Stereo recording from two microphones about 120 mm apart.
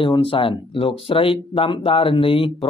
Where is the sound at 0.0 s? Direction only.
45° left (ahead or behind).